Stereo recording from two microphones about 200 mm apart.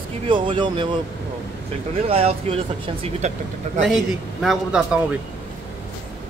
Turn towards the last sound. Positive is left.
turn(degrees=0)  # may be behind; listen again after turning